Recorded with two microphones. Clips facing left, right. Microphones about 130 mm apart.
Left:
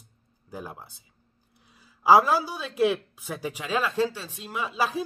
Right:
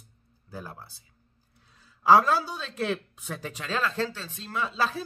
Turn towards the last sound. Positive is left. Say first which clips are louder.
# left 1 dB
turn(degrees=10)  # may be behind; listen again after turning